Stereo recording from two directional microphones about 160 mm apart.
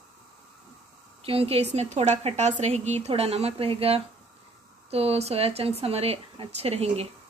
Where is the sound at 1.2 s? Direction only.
35° right (ahead or behind).